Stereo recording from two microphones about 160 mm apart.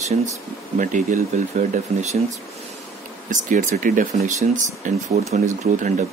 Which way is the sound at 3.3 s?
55° right (ahead or behind).